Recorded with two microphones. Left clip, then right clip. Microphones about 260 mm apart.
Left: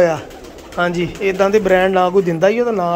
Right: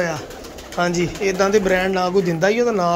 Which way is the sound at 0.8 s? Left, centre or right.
Centre.